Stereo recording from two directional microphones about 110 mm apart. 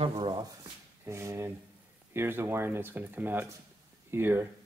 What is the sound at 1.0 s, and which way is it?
Speech, 25° right (ahead or behind).